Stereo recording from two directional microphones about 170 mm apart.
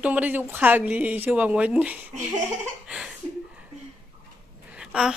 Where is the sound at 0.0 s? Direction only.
10° right (ahead or behind).